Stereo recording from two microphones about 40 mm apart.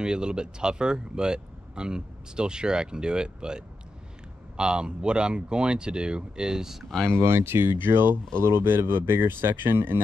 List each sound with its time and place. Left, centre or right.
0.0 s speech: right
7.2 s speech: right
8.4 s speech: right